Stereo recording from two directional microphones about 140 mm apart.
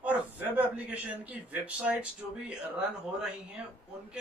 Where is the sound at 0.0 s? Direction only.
10° right (ahead or behind).